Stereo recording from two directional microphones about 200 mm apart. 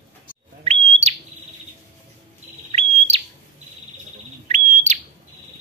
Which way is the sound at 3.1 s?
25° right (ahead or behind).